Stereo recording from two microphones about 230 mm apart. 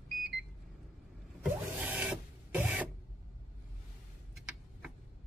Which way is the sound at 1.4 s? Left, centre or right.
Centre.